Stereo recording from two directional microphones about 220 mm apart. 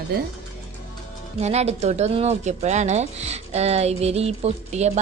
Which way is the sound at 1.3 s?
30° right (ahead or behind).